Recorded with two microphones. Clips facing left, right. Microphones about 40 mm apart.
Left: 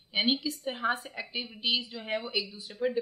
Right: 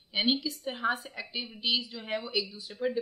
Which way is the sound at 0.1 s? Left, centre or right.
Centre.